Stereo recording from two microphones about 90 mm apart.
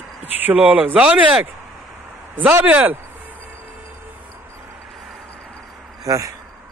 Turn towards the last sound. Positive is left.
turn(degrees=-35)  # may be behind; listen again after turning